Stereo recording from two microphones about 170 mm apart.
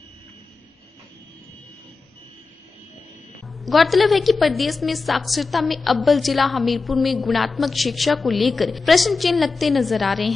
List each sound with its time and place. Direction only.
3.4 s a woman's voice: centre (ahead or behind)